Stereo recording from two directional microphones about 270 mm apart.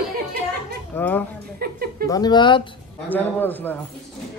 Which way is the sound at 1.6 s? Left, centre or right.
Right.